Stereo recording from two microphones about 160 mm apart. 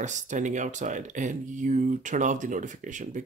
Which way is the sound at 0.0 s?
50° right (ahead or behind).